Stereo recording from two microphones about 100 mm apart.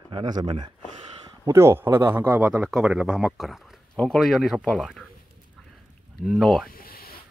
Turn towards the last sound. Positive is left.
turn(degrees=0)  # may be behind; listen again after turning